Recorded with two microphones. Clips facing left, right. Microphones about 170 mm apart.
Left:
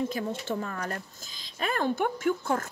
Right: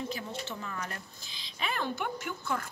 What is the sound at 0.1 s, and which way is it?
Speech, 50° left (ahead or behind).